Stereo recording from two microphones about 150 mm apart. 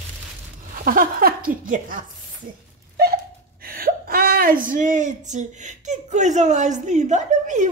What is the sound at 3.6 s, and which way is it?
Speech, 75° right (ahead or behind).